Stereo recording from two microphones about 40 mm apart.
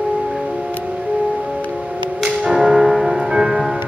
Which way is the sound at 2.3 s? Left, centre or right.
Centre.